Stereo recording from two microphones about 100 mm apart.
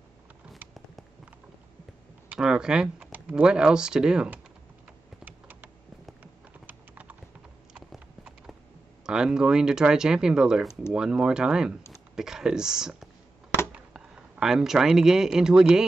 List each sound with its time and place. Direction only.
2.3 s speech: 5° right (ahead or behind)
5.2 s computer keyboard: 15° right (ahead or behind)
6.6 s clip-clop: 20° right (ahead or behind)
7.7 s clip-clop: 5° right (ahead or behind)
9.0 s speech: 5° right (ahead or behind)